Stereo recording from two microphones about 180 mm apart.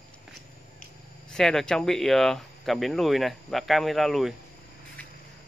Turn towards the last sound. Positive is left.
turn(degrees=0)  # may be behind; listen again after turning